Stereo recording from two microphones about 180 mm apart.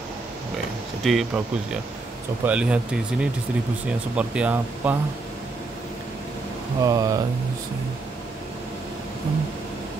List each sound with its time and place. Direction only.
1.0 s speech: 5° right (ahead or behind)
6.8 s speech: 20° right (ahead or behind)